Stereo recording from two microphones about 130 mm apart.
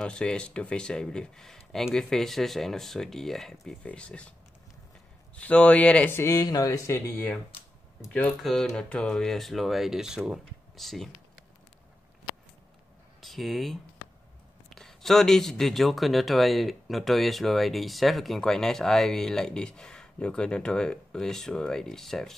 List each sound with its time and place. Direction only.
0.0 s speech: 5° left (ahead or behind)
5.3 s speech: 10° left (ahead or behind)
8.4 s speech: centre (ahead or behind)
13.2 s speech: centre (ahead or behind)